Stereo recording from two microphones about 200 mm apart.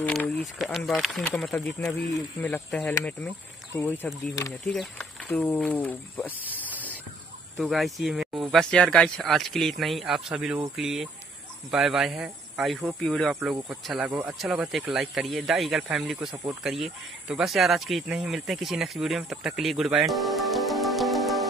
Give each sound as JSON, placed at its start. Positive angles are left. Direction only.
{"t": 0.0, "sound": "speech", "side_deg": 5}
{"t": 7.5, "sound": "speech", "side_deg": 0}